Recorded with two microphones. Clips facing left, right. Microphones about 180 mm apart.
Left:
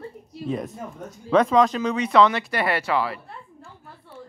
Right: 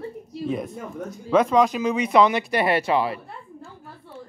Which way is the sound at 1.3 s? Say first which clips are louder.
Even; 5° right (ahead or behind).